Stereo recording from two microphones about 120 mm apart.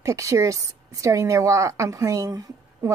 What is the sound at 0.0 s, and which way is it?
Speech, 25° right (ahead or behind).